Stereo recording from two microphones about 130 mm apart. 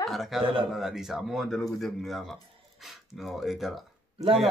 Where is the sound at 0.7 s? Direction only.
Centre (ahead or behind).